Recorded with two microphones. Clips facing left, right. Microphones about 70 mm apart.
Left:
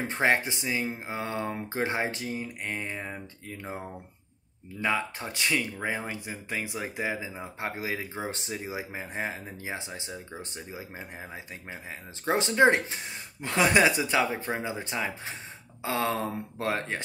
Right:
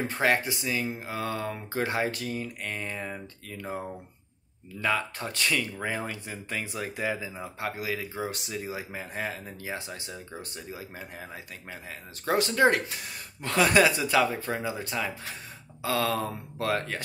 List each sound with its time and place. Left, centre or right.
0.0 s speech: left
8.5 s speech: centre